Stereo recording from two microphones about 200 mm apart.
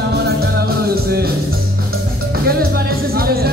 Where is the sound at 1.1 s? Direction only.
50° right (ahead or behind).